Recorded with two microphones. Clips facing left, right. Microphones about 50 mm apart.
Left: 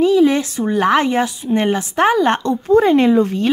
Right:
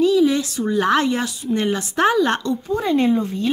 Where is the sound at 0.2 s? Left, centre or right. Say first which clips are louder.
Left 4 dB; left.